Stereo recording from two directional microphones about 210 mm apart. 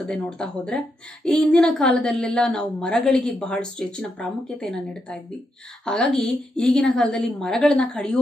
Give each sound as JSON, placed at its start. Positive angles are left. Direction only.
{"t": 0.0, "sound": "a woman's voice", "side_deg": 5}